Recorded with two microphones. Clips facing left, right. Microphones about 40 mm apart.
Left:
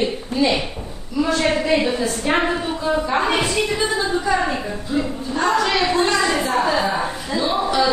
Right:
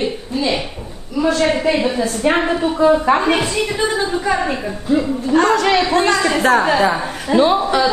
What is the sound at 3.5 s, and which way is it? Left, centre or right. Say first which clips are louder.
Speech: right 2 dB; right.